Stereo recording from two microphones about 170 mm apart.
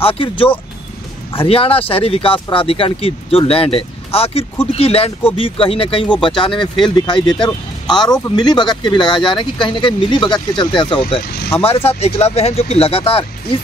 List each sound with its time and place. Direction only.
0.0 s speech: 30° left (ahead or behind)